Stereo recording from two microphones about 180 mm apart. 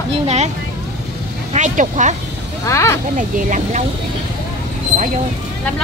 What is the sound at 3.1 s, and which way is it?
Speech, 45° right (ahead or behind).